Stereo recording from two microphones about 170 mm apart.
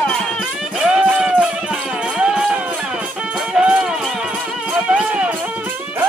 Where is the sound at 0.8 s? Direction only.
5° right (ahead or behind).